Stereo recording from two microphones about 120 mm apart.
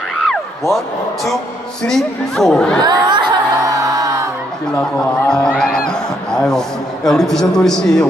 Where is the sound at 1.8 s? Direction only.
5° left (ahead or behind).